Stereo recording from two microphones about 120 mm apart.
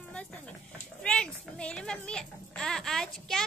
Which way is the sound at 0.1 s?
10° left (ahead or behind).